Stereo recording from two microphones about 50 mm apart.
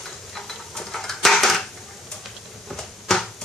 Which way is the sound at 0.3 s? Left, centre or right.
Centre.